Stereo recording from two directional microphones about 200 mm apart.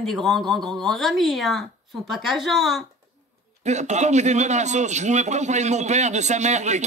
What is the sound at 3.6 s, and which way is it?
A man's voice, 35° right (ahead or behind).